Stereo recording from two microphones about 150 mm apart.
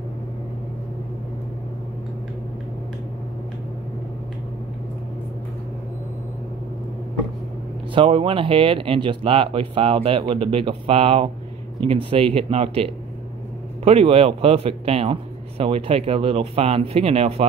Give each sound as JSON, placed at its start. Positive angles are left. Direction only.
{"t": 7.9, "sound": "speech", "side_deg": -35}